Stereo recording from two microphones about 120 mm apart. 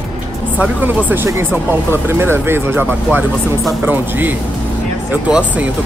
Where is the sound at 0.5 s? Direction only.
15° right (ahead or behind).